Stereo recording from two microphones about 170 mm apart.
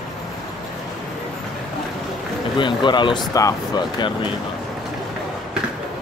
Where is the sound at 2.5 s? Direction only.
25° left (ahead or behind).